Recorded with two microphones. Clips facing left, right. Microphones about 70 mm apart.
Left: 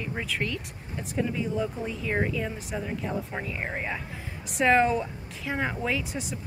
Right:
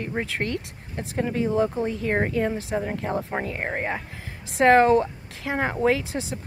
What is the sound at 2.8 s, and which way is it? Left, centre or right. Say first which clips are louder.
Speech: right 4 dB; right.